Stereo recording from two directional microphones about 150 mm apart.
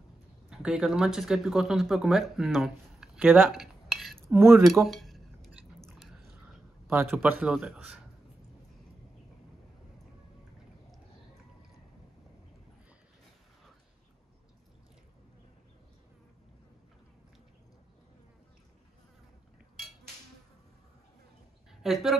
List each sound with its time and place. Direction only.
0.5 s speech: 5° right (ahead or behind)
3.5 s cutlery: centre (ahead or behind)
4.3 s a man's voice: 15° right (ahead or behind)
4.8 s chewing: centre (ahead or behind)
6.4 s a sound: 15° right (ahead or behind)
7.2 s a man's voice: 10° right (ahead or behind)
21.8 s speech: centre (ahead or behind)